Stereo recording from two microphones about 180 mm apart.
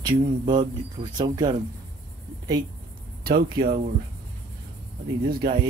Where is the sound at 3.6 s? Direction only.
55° right (ahead or behind).